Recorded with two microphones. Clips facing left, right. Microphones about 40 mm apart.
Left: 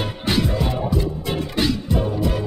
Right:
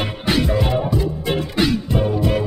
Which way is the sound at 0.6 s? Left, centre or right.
Right.